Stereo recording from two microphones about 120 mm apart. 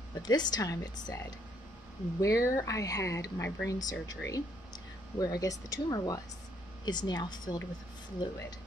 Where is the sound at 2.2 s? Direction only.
25° left (ahead or behind).